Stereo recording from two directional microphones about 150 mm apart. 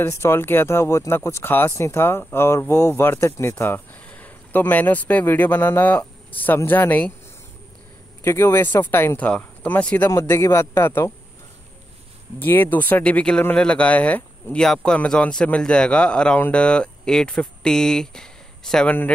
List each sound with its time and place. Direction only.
0.0 s speech: 15° left (ahead or behind)
8.2 s speech: 20° left (ahead or behind)
12.4 s speech: 15° left (ahead or behind)